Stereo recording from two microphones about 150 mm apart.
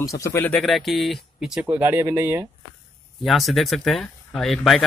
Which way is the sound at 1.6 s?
15° right (ahead or behind).